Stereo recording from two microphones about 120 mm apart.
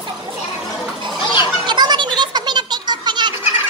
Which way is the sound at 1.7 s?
40° right (ahead or behind).